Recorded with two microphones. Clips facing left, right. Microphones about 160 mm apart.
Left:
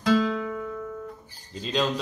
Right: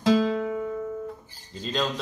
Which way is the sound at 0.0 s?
35° right (ahead or behind).